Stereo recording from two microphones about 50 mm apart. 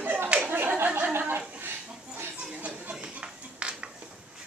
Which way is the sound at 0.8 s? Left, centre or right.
Right.